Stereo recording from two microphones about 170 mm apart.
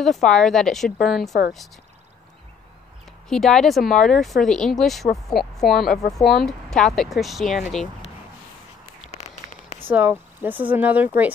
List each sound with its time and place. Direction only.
0.0 s speech: centre (ahead or behind)
3.3 s speech: centre (ahead or behind)
9.1 s a sound: 40° left (ahead or behind)
9.8 s speech: 10° right (ahead or behind)